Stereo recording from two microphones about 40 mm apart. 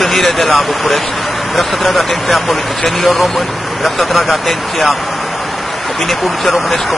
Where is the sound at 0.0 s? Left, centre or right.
Centre.